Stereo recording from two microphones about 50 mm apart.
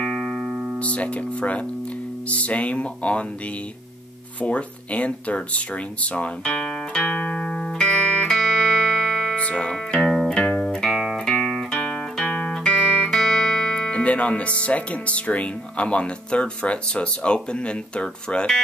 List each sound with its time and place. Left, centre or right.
0.0 s music: centre
0.7 s speech: left
4.4 s speech: left
6.4 s music: centre
7.1 s music: left
8.3 s music: centre
9.4 s speech: left
9.9 s music: centre
10.2 s music: centre
12.3 s music: left
13.1 s music: centre
13.8 s speech: left